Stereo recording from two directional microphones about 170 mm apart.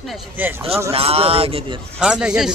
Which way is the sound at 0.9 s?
35° right (ahead or behind).